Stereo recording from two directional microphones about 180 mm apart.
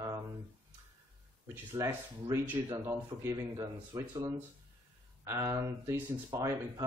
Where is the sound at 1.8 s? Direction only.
20° right (ahead or behind).